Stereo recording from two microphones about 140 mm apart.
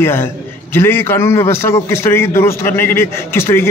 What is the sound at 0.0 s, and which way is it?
A man's voice, 15° left (ahead or behind).